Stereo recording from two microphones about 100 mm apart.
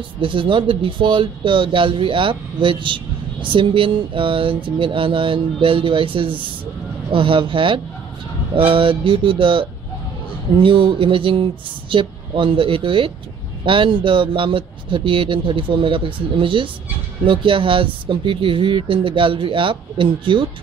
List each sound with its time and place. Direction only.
0.2 s speech: 55° right (ahead or behind)